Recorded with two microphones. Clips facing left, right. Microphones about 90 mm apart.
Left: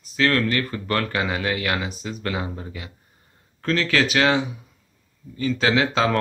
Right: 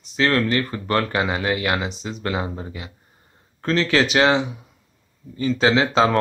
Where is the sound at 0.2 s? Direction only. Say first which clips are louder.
Right 1 dB; 25° right (ahead or behind).